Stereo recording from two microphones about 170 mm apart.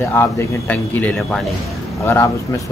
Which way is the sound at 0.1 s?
15° left (ahead or behind).